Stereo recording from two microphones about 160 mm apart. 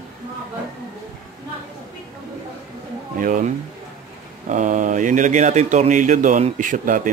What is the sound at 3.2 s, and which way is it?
Speech, 55° right (ahead or behind).